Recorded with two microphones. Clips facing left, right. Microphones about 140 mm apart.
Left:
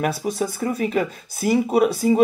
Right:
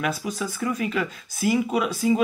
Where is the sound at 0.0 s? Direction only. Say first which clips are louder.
Left 4 dB; 40° left (ahead or behind).